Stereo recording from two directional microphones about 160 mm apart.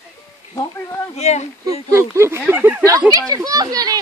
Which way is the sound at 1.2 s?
45° left (ahead or behind).